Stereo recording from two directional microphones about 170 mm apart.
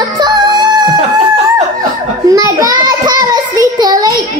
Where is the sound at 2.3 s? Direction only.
20° right (ahead or behind).